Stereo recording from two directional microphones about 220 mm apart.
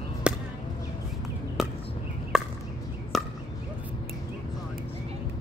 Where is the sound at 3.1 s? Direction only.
Centre (ahead or behind).